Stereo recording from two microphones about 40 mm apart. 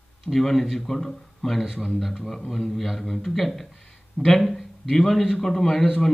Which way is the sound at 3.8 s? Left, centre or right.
Centre.